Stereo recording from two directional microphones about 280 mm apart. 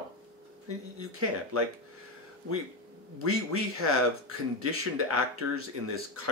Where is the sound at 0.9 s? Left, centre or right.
Right.